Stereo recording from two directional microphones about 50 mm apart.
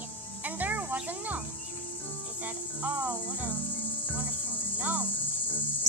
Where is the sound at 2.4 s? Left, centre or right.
Right.